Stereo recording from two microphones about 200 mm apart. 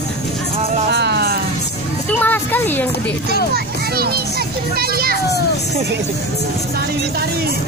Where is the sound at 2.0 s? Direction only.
10° left (ahead or behind).